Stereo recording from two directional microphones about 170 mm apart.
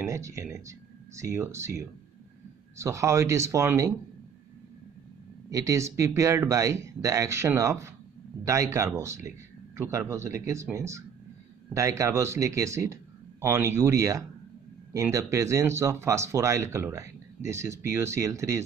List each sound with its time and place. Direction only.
0.0 s a sound: 20° right (ahead or behind)
0.7 s speech: 15° right (ahead or behind)
5.5 s speech: 20° right (ahead or behind)